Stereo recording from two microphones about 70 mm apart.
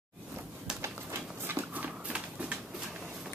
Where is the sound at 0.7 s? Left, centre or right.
Right; by 3.0 s centre.